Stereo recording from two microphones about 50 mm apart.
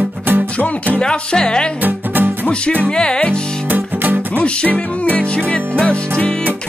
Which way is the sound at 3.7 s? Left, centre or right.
Right.